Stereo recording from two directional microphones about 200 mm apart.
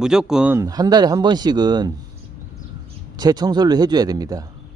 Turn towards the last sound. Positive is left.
turn(degrees=-20)  # may be behind; listen again after turning